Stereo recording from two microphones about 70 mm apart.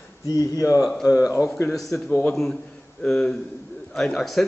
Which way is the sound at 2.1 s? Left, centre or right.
Left.